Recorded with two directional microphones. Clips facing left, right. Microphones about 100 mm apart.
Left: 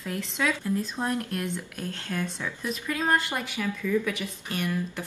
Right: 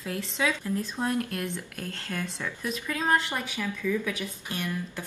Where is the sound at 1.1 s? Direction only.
20° left (ahead or behind).